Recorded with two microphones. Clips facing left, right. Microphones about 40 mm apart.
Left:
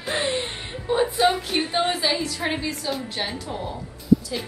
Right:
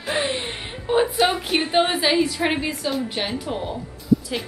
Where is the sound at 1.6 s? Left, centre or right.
Right.